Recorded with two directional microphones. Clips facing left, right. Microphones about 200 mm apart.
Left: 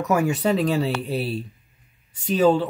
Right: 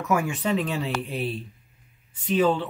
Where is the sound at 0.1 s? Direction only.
40° left (ahead or behind).